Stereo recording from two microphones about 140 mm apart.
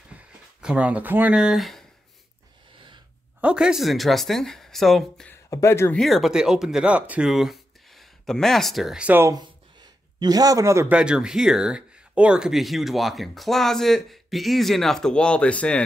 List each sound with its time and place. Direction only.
0.1 s a sound: 5° right (ahead or behind)
3.3 s speech: 5° right (ahead or behind)
5.3 s speech: 20° left (ahead or behind)
5.9 s speech: centre (ahead or behind)
10.1 s a man's voice: 30° right (ahead or behind)
10.9 s speech: 5° right (ahead or behind)